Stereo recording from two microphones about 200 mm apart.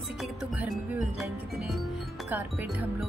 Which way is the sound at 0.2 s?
Centre (ahead or behind).